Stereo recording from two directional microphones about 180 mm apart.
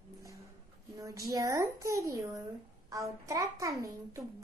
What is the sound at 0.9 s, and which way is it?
A woman's voice, 15° right (ahead or behind).